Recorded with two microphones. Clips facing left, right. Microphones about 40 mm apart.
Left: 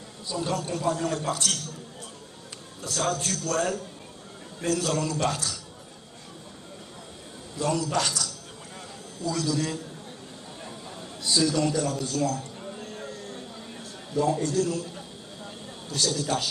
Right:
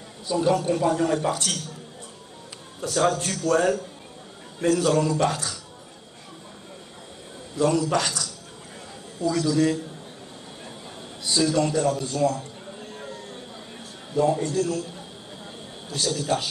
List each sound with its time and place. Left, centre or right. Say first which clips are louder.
0.3 s a man's voice: right 7 dB; centre
2.9 s a man's voice: right 5 dB; right
7.7 s a man's voice: right 3 dB; centre
9.2 s a man's voice: right 6 dB; right
11.3 s a man's voice: right 2 dB; centre
14.1 s a man's voice: right 2 dB; centre
15.9 s a man's voice: right 2 dB; centre